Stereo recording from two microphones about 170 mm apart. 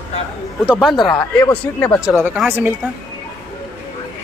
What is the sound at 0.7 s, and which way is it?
Speech, centre (ahead or behind).